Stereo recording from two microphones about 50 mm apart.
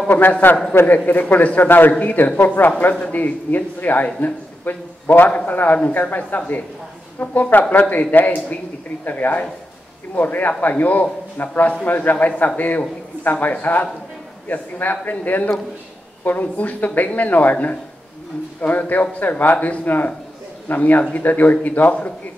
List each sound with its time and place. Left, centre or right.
0.1 s a man's voice: left
1.9 s a man's voice: left